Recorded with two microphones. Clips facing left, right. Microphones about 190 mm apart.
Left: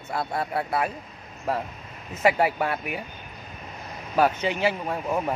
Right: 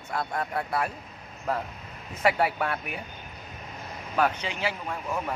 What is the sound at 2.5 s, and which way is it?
Speech, 25° left (ahead or behind).